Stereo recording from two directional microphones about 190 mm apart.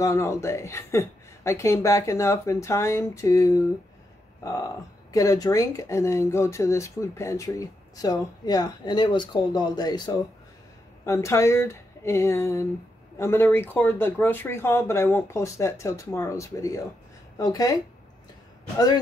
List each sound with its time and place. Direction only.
0.0 s a woman's voice: 15° left (ahead or behind)